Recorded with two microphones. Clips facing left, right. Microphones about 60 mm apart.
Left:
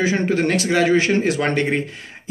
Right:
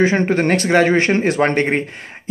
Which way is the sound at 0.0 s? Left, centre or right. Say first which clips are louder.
Right 3 dB; right.